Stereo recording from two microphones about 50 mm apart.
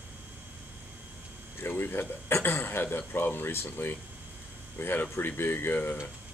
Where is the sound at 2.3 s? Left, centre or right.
Left.